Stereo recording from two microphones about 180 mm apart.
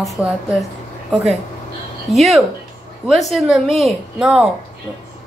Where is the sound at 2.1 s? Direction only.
Centre (ahead or behind).